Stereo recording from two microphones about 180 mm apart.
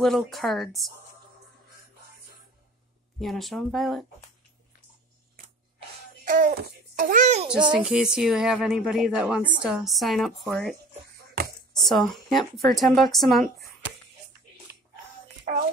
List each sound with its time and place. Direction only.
0.0 s a woman's voice: centre (ahead or behind)
3.2 s a woman's voice: centre (ahead or behind)
6.2 s a child's voice: 50° right (ahead or behind)
7.5 s speech: 25° right (ahead or behind)
7.8 s a woman's voice: 5° right (ahead or behind)
11.4 s a sound: 60° right (ahead or behind)
11.9 s a woman's voice: centre (ahead or behind)
14.7 s music: 65° right (ahead or behind)